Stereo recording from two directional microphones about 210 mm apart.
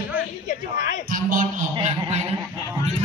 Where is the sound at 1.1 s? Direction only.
40° right (ahead or behind).